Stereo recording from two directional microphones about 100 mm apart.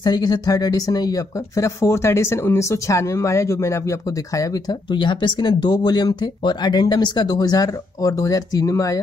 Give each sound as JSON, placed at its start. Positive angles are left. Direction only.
{"t": 0.0, "sound": "speech", "side_deg": 40}
{"t": 4.9, "sound": "speech", "side_deg": 50}